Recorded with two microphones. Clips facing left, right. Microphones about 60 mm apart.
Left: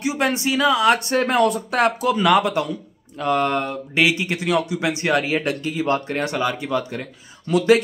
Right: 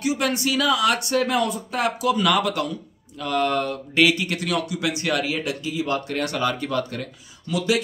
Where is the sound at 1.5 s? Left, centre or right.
Left.